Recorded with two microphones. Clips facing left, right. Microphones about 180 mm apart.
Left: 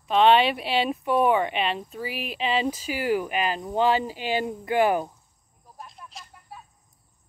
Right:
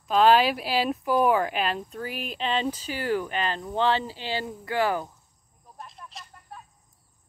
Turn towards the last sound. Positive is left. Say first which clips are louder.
# even
turn(degrees=0)  # may be behind; listen again after turning